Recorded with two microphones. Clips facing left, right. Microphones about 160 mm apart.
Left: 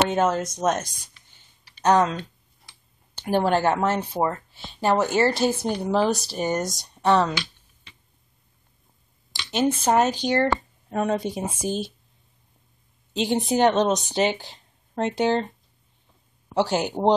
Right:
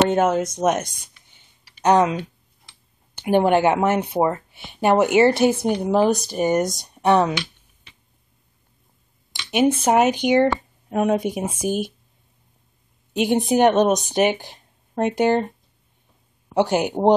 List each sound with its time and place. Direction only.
0.1 s speech: 10° right (ahead or behind)
1.3 s a sound: 15° right (ahead or behind)
3.3 s speech: 15° right (ahead or behind)
9.3 s speech: 15° right (ahead or behind)
13.1 s a woman's voice: 15° right (ahead or behind)
16.5 s speech: 15° right (ahead or behind)